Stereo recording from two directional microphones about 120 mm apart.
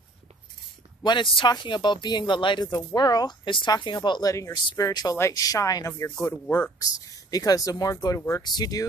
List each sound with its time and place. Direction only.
1.0 s speech: 45° left (ahead or behind); by 6.1 s 25° left (ahead or behind)
6.3 s speech: 15° left (ahead or behind)
6.8 s speech: 30° left (ahead or behind)